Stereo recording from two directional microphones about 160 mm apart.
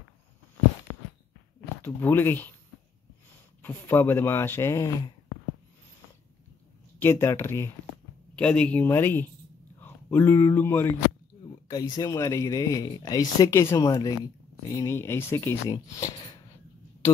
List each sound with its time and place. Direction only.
1.8 s speech: 15° left (ahead or behind)
3.6 s speech: 15° left (ahead or behind)
7.0 s speech: 15° left (ahead or behind)
11.7 s speech: 25° left (ahead or behind)